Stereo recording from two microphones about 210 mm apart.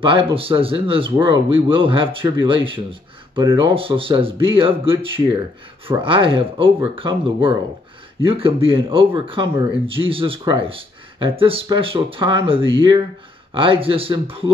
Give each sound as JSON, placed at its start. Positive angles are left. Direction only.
{"t": 0.0, "sound": "speech", "side_deg": -25}